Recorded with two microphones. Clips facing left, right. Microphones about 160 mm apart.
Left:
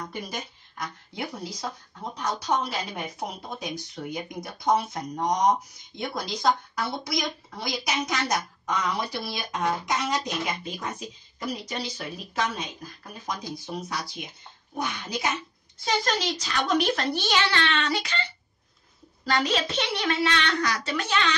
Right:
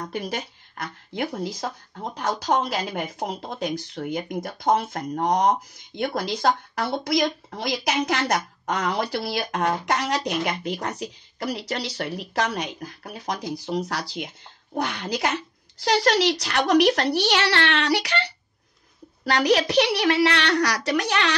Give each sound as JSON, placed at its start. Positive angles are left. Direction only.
{"t": 0.0, "sound": "speech", "side_deg": -65}
{"t": 2.4, "sound": "a woman's voice", "side_deg": -90}
{"t": 3.3, "sound": "speech", "side_deg": -60}